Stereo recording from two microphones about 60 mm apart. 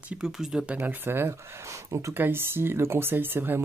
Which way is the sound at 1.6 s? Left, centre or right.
Right.